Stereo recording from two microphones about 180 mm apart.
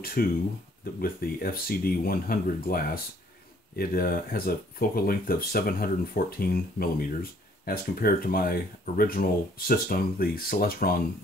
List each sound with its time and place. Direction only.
0.0 s speech: 55° left (ahead or behind)